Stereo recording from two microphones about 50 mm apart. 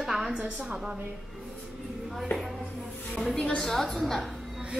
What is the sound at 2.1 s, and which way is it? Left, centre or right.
A woman's voice, centre.